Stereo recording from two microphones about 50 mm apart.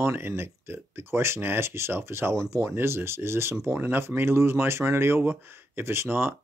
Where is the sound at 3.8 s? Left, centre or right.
Right.